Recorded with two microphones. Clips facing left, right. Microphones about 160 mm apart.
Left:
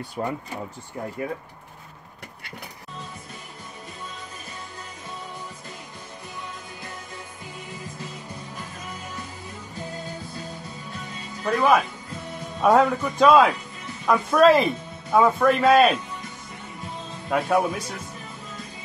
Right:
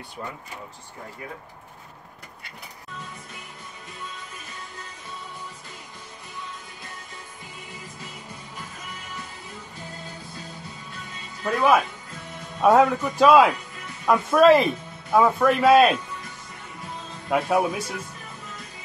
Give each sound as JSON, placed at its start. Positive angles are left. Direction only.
{"t": 0.2, "sound": "speech", "side_deg": 45}
{"t": 11.5, "sound": "speech", "side_deg": 0}
{"t": 17.3, "sound": "speech", "side_deg": -5}